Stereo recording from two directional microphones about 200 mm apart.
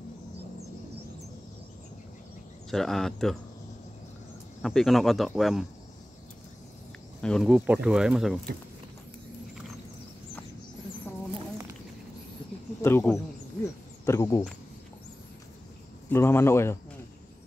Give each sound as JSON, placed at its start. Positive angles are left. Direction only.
{"t": 2.7, "sound": "speech", "side_deg": 0}
{"t": 4.6, "sound": "speech", "side_deg": 0}
{"t": 7.2, "sound": "speech", "side_deg": 5}
{"t": 12.8, "sound": "a man's voice", "side_deg": 10}
{"t": 16.1, "sound": "a man's voice", "side_deg": 10}